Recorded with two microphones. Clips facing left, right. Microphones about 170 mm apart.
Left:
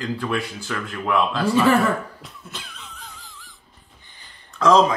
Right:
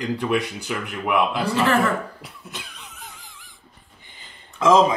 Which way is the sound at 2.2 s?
10° right (ahead or behind).